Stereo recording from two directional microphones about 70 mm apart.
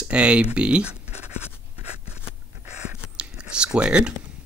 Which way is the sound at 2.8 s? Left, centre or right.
Centre.